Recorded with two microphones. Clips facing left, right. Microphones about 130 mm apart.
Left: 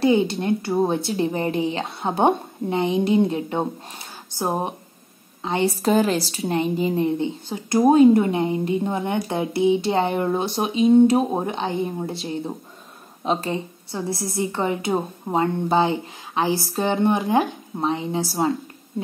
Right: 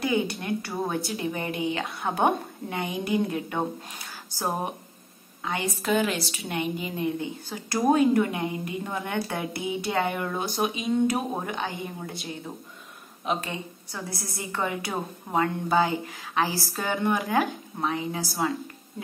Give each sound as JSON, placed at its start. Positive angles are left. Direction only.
{"t": 0.0, "sound": "a woman's voice", "side_deg": 25}